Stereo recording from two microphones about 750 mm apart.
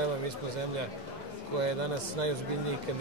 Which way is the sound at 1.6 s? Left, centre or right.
Right.